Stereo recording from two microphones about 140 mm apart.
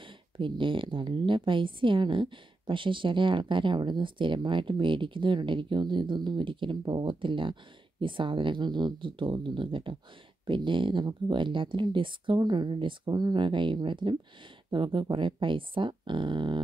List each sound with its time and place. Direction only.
0.0 s a woman's voice: 35° right (ahead or behind)